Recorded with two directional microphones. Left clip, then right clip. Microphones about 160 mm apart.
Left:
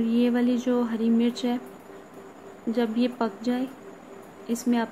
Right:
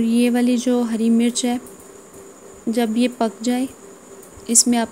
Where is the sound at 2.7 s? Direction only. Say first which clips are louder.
Right 6 dB; 40° right (ahead or behind).